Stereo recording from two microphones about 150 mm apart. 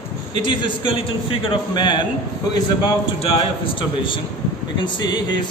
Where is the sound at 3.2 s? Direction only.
35° left (ahead or behind).